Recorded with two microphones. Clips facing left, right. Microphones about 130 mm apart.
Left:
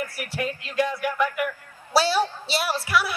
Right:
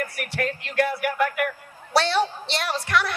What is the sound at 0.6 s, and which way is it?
Speech, 70° right (ahead or behind).